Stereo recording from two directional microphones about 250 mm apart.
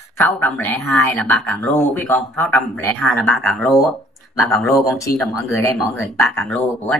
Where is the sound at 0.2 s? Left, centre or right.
Centre.